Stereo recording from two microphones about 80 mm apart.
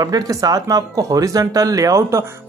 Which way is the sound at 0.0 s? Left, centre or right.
Right.